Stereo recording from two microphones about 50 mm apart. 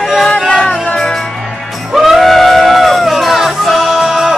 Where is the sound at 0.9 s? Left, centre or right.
Centre.